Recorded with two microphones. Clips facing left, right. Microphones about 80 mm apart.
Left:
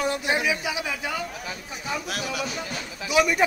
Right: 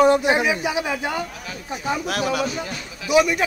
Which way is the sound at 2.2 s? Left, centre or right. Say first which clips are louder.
Right 7 dB; right.